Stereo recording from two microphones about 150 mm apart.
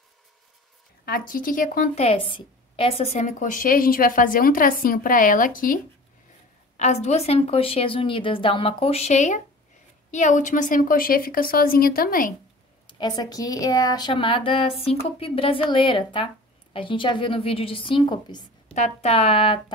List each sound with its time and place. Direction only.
1.0 s a woman's voice: 70° left (ahead or behind)
2.0 s a woman's voice: 40° left (ahead or behind); by 5.8 s 65° left (ahead or behind)
6.8 s a woman's voice: 50° left (ahead or behind); by 12.4 s 70° left (ahead or behind)
12.8 s speech: 25° left (ahead or behind)
18.8 s speech: 40° left (ahead or behind)